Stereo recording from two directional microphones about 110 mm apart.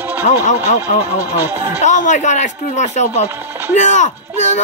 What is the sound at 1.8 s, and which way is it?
Speech, 90° left.